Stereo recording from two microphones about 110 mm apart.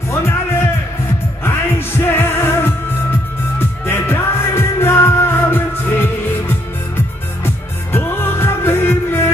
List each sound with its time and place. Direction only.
2.0 s music: 20° left (ahead or behind)